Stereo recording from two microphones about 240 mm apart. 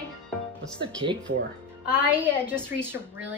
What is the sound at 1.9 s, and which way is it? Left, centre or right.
Speech, centre.